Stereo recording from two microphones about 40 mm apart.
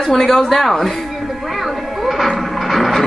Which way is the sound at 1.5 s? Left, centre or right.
Centre.